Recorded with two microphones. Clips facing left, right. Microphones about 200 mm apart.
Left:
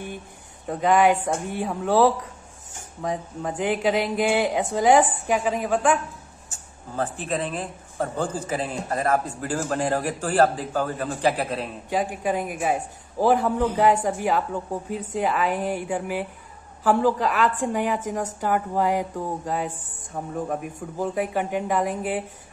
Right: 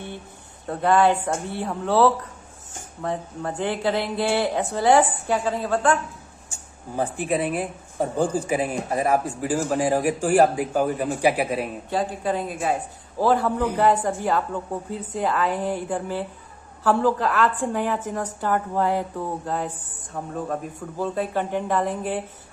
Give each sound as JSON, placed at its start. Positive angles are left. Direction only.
{"t": 0.7, "sound": "speech", "side_deg": 15}
{"t": 6.5, "sound": "speech", "side_deg": -10}
{"t": 11.9, "sound": "speech", "side_deg": 15}